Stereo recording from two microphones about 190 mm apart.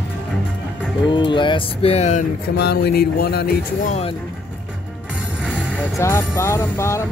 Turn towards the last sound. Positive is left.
turn(degrees=15)  # may be behind; listen again after turning